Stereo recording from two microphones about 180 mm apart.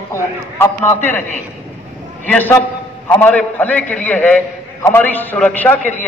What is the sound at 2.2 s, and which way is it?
A man's voice, 10° left (ahead or behind).